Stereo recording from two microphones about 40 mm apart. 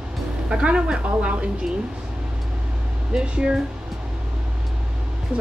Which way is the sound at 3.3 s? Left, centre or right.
Right.